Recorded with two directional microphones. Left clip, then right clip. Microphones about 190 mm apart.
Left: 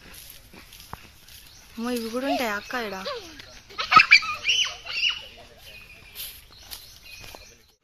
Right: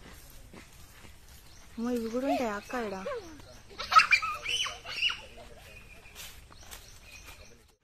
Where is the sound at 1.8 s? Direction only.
5° left (ahead or behind).